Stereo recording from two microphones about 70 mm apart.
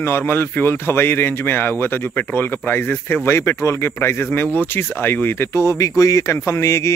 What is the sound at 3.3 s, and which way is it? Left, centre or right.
Speech, left.